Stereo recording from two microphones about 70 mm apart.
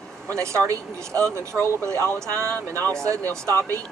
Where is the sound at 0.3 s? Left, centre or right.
Right.